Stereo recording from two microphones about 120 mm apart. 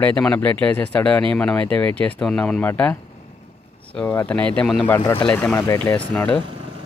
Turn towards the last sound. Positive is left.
turn(degrees=10)  # may be behind; listen again after turning